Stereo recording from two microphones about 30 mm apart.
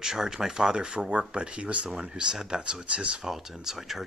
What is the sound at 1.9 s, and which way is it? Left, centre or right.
Speech, right.